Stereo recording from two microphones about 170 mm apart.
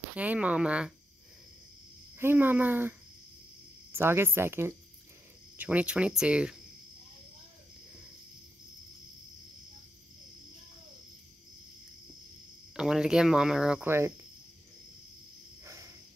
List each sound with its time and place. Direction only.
0.1 s speech: 10° right (ahead or behind)
2.1 s speech: 10° right (ahead or behind)
12.7 s speech: 5° right (ahead or behind)
15.6 s a sound: 15° right (ahead or behind)